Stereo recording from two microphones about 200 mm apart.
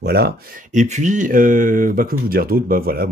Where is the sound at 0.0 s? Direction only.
50° right (ahead or behind).